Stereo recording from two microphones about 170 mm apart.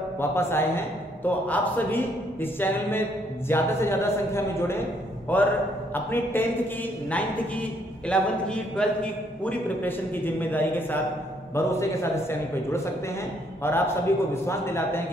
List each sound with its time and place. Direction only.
0.2 s a man's voice: 15° left (ahead or behind)